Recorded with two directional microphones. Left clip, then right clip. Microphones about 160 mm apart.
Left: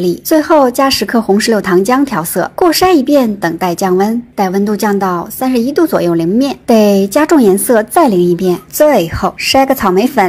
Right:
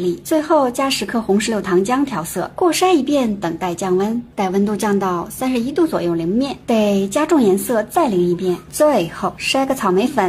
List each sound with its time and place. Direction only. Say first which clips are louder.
0.3 s speech: left 7 dB; 25° left (ahead or behind)